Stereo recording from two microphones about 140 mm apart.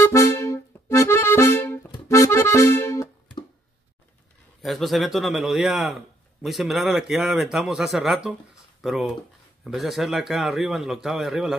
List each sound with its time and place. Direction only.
0.0 s accordion: 20° left (ahead or behind)
4.6 s speech: centre (ahead or behind)